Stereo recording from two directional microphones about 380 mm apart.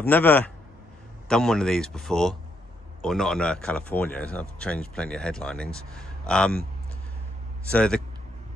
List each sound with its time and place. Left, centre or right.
0.0 s speech: centre
7.7 s speech: centre